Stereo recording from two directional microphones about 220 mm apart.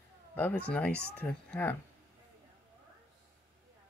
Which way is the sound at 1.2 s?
10° left (ahead or behind).